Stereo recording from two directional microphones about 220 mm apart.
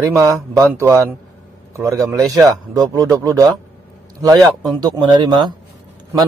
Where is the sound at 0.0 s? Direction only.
15° right (ahead or behind).